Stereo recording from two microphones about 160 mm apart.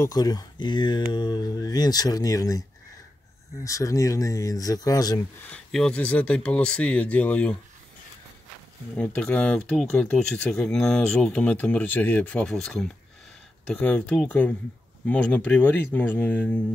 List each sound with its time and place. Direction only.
0.0 s speech: 25° left (ahead or behind)
3.6 s speech: 20° left (ahead or behind)
5.5 s speech: 5° left (ahead or behind)
8.9 s speech: 10° left (ahead or behind)